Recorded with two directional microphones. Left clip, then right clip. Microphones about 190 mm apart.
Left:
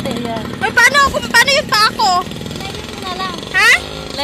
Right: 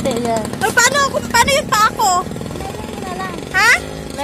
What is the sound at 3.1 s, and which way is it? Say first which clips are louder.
Vehicle: left 4 dB; 40° right (ahead or behind).